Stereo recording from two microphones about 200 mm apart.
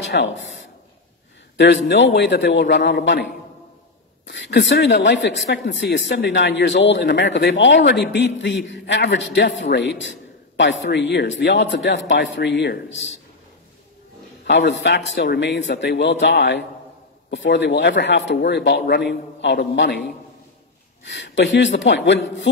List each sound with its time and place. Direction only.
0.0 s a sound: 60° left (ahead or behind)
1.6 s a man's voice: 60° left (ahead or behind)
14.4 s a man's voice: 60° left (ahead or behind)